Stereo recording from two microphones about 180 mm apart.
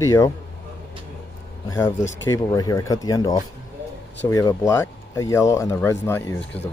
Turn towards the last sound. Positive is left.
turn(degrees=15)  # may be behind; listen again after turning